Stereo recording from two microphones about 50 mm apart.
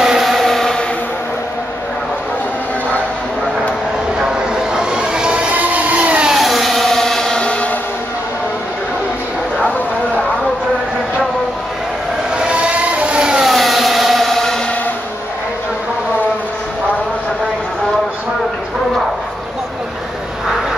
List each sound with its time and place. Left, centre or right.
0.0 s vehicle: centre
4.2 s a sound: centre
5.5 s train: right
6.2 s a sound: centre
7.4 s vehicle: left
12.4 s vehicle: right
13.5 s vehicle: centre